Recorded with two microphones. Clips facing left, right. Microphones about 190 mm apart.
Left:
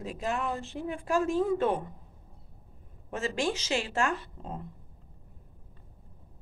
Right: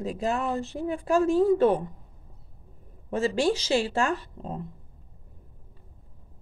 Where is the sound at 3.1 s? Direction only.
35° right (ahead or behind).